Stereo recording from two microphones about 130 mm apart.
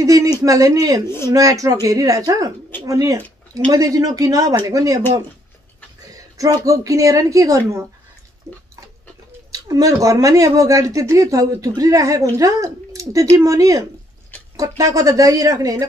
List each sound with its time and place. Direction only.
0.0 s speech: 25° right (ahead or behind)
1.0 s speech: 20° left (ahead or behind)
1.3 s speech: 25° right (ahead or behind)
6.1 s speech: 25° right (ahead or behind)
8.5 s pig: 25° right (ahead or behind)
9.5 s speech: 25° right (ahead or behind)